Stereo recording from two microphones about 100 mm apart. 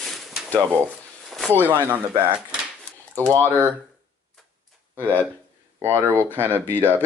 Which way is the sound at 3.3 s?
30° right (ahead or behind).